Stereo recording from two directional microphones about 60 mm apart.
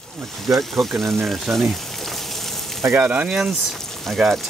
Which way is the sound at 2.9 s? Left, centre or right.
Right.